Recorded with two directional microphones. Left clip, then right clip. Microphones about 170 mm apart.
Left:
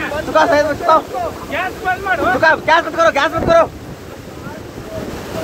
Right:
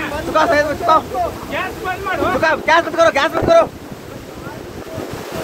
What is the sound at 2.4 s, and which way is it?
Speech, 5° right (ahead or behind).